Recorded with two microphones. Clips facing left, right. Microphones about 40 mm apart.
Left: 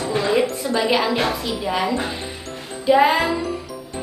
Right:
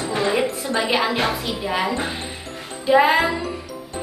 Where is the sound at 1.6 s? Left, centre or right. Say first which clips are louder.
Left 1 dB; centre.